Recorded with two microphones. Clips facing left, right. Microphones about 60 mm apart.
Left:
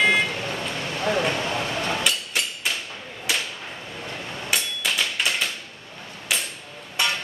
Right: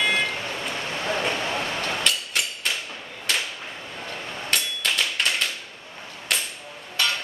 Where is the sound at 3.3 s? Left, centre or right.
Centre.